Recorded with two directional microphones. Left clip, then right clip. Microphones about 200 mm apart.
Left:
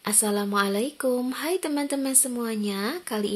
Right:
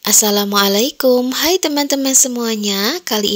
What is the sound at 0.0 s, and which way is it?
Speech, 45° right (ahead or behind).